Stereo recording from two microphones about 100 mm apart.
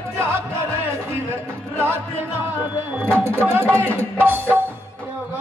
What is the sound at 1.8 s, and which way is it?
Music, 20° right (ahead or behind).